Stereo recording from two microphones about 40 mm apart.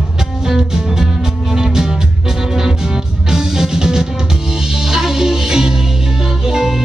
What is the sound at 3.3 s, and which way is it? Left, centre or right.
Music, centre.